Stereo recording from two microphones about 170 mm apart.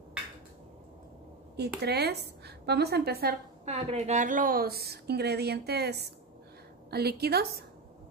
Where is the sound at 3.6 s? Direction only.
40° right (ahead or behind); by 7.6 s 65° right (ahead or behind).